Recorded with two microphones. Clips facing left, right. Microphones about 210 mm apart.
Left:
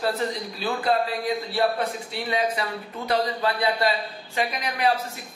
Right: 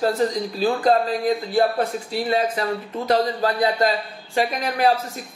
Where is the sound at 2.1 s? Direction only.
40° right (ahead or behind).